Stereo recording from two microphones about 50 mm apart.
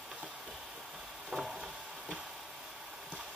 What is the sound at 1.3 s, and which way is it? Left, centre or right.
Stir, centre.